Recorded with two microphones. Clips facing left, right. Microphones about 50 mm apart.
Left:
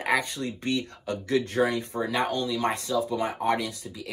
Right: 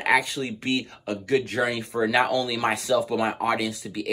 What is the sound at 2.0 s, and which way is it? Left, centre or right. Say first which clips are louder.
Speech: right 6 dB; right.